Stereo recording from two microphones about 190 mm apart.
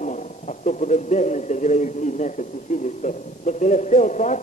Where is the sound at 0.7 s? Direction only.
40° left (ahead or behind).